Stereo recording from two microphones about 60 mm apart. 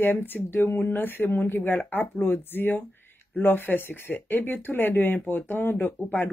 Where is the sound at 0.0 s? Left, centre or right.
Left.